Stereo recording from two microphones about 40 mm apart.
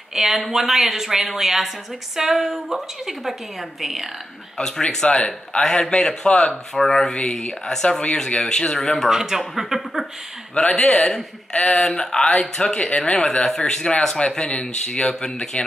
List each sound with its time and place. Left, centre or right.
0.1 s speech: centre
4.6 s speech: centre
5.0 s speech: left
6.7 s speech: centre
7.2 s speech: left
7.7 s speech: centre
9.1 s speech: centre
10.6 s speech: centre
15.5 s speech: left